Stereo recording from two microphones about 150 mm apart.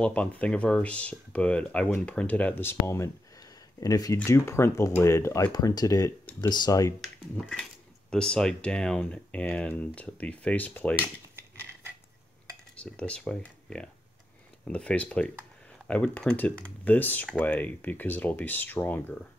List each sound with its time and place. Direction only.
0.0 s speech: 10° left (ahead or behind); by 6.9 s 25° left (ahead or behind)
7.0 s speech: 5° left (ahead or behind)
12.8 s speech: 5° left (ahead or behind)
14.6 s speech: 10° left (ahead or behind)